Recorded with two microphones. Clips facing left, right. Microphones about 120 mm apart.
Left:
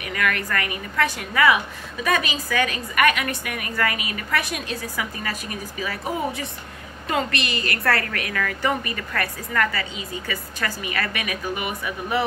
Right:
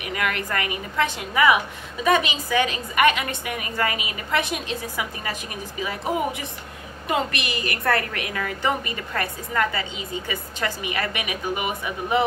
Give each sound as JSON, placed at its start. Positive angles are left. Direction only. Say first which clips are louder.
{"t": 0.0, "sound": "a woman's voice", "louder": "left 1 dB", "side_deg": -20}